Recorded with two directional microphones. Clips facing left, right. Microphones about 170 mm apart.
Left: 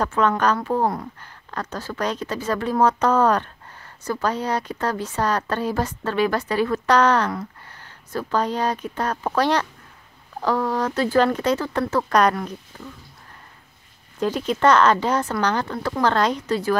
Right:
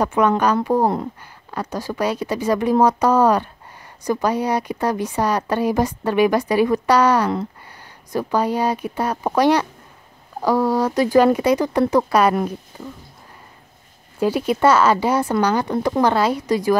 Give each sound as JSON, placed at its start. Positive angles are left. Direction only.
{"t": 0.0, "sound": "speech", "side_deg": -15}
{"t": 12.1, "sound": "speech", "side_deg": -5}
{"t": 14.2, "sound": "speech", "side_deg": -10}